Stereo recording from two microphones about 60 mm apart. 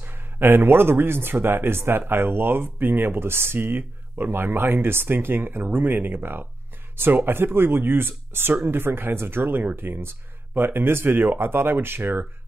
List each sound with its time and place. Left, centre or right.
0.0 s speech: right